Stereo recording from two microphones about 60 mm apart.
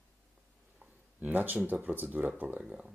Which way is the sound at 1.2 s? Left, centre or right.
Right.